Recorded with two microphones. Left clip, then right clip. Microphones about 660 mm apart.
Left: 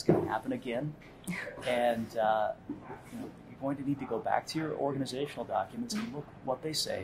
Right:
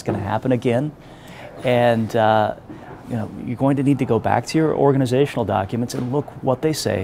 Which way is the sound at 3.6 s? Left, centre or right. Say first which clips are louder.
Right 16 dB; right.